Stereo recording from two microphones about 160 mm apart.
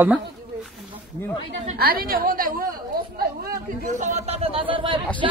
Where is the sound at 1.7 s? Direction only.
70° right (ahead or behind).